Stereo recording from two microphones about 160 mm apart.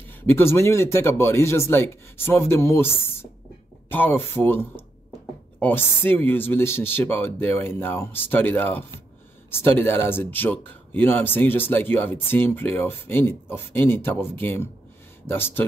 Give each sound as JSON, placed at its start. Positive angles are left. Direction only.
{"t": 0.1, "sound": "speech", "side_deg": 15}